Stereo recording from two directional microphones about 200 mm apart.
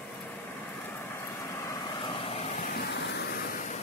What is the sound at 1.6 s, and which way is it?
Vehicle, 25° left (ahead or behind).